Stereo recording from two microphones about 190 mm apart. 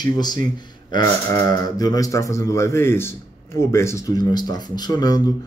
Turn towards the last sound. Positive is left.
turn(degrees=20)  # may be behind; listen again after turning